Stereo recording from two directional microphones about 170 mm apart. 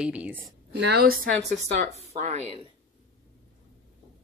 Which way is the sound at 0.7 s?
80° right.